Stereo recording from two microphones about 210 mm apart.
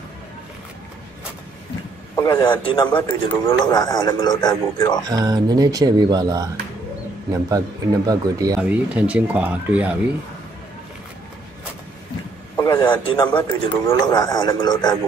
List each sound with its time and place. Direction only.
2.1 s a man's voice: 10° left (ahead or behind)
2.4 s a man's voice: 25° left (ahead or behind)
2.9 s a man's voice: 10° left (ahead or behind)
5.1 s speech: 20° right (ahead or behind)
8.5 s speech: 5° right (ahead or behind)
12.5 s a man's voice: 15° left (ahead or behind)
13.3 s a man's voice: 10° left (ahead or behind)